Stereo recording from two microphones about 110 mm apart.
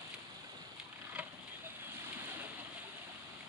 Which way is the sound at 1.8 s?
20° right (ahead or behind).